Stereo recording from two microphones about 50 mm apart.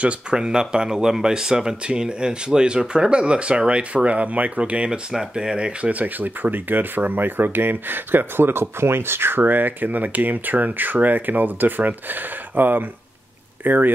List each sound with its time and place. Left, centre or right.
0.0 s speech: centre
5.1 s speech: centre; by 13.9 s right